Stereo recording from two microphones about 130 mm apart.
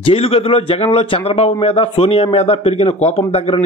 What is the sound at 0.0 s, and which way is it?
A man's voice, 45° left (ahead or behind).